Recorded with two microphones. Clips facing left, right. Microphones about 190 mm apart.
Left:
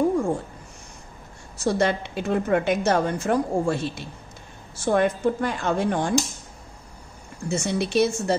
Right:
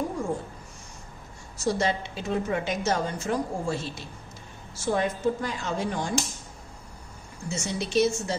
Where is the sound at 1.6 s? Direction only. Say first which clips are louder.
Left 4 dB; 60° left (ahead or behind).